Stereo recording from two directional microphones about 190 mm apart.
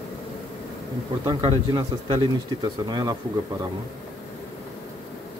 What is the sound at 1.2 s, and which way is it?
Speech, 20° right (ahead or behind).